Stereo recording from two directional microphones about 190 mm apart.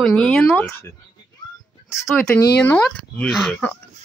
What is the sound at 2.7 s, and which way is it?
Speech, 5° left (ahead or behind).